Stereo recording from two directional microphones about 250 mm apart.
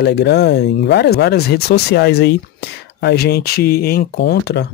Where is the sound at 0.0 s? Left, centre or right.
Left.